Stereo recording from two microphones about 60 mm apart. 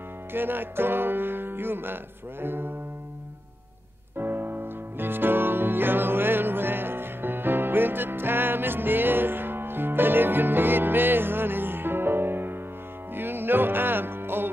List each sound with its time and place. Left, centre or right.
0.3 s music: right
4.2 s music: right